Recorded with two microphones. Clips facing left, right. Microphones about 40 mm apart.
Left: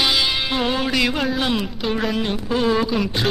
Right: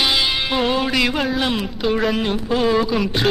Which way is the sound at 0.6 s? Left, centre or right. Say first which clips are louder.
Right 2 dB; centre.